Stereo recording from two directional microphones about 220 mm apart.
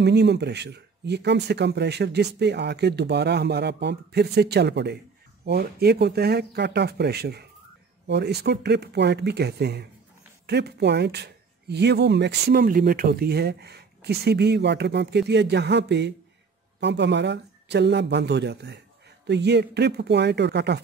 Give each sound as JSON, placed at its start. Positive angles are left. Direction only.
{"t": 0.0, "sound": "speech", "side_deg": -50}